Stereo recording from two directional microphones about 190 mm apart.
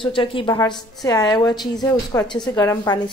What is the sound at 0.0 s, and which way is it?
A woman's voice, 25° left (ahead or behind).